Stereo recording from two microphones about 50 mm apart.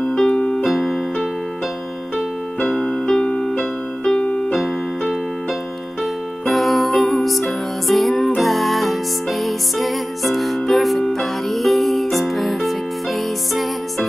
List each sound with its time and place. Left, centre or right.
0.1 s keyboard: centre
0.4 s keyboard: left
0.7 s keyboard: centre
2.1 s keyboard: centre
3.3 s music: centre
4.2 s keyboard: centre
6.4 s music: centre